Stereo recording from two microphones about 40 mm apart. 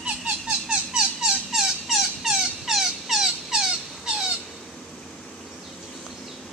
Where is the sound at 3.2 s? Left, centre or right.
Centre.